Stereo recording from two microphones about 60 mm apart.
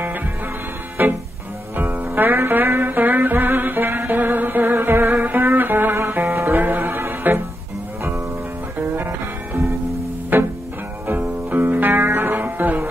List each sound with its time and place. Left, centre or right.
1.0 s music: right
8.7 s music: right